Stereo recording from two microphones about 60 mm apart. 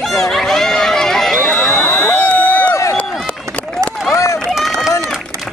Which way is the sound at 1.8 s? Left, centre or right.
Left.